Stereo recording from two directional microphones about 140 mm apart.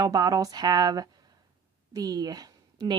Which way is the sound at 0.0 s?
25° right (ahead or behind).